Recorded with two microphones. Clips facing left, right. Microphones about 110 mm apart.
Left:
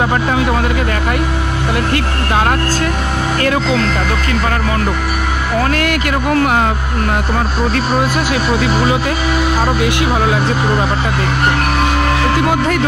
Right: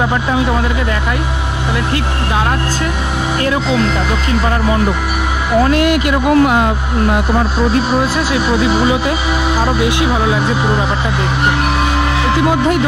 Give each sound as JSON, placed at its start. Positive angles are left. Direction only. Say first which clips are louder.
{"t": 3.7, "sound": "speech", "louder": "right 1 dB", "side_deg": -20}
{"t": 5.6, "sound": "speech", "louder": "right 5 dB", "side_deg": -20}